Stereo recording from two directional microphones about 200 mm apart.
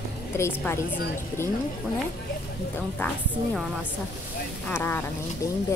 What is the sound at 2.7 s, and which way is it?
A woman's voice, 5° left (ahead or behind).